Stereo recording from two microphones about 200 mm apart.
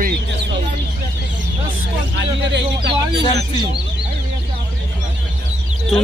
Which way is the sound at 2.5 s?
60° right (ahead or behind).